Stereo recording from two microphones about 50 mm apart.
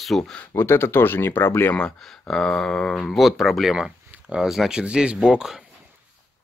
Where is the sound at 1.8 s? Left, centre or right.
Centre.